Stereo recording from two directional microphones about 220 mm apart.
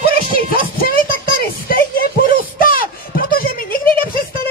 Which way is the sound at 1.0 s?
40° left (ahead or behind).